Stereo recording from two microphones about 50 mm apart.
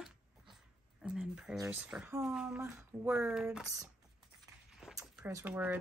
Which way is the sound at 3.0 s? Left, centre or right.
Right.